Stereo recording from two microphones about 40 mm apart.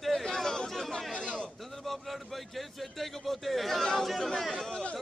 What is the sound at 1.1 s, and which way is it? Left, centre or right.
Speech, left.